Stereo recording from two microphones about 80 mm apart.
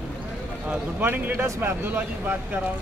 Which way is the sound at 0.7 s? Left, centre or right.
Right.